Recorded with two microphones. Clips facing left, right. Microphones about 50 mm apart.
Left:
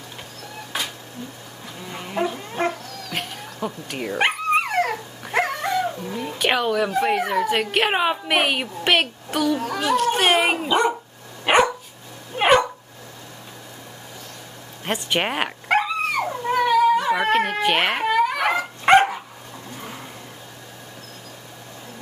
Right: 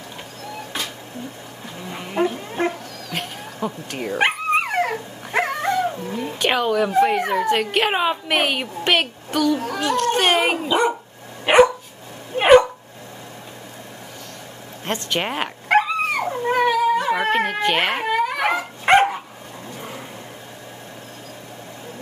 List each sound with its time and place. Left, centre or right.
1.8 s cat: centre
3.5 s dog: centre
6.0 s fowl: centre
7.0 s speech: centre
11.4 s dog: centre
14.9 s speech: centre
16.3 s dog: centre
16.6 s a sound: centre